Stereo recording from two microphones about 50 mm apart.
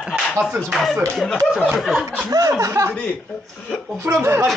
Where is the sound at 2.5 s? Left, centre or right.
Right.